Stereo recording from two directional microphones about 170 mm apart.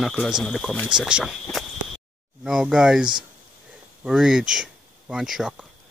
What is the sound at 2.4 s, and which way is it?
Speech, 5° right (ahead or behind).